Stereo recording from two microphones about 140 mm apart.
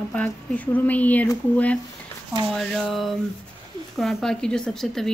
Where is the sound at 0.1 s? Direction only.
10° left (ahead or behind).